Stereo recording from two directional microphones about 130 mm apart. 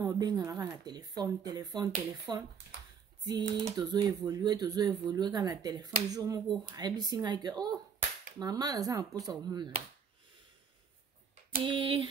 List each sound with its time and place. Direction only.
0.0 s speech: 30° right (ahead or behind)
11.6 s speech: 40° right (ahead or behind)